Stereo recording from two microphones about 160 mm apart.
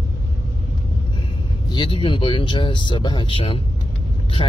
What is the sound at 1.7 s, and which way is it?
Speech, 30° left (ahead or behind).